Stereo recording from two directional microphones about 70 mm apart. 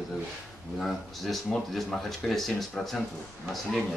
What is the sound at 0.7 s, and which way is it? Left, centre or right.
Speech, centre.